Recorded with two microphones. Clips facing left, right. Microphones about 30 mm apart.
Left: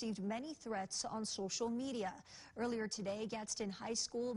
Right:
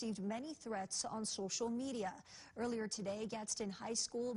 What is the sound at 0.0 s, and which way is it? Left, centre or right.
Speech, centre.